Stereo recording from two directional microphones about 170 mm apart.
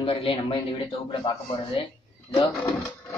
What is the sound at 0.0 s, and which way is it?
Speech, 35° left (ahead or behind).